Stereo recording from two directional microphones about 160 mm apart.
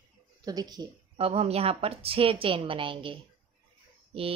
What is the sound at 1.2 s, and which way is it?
Speech, 40° right (ahead or behind).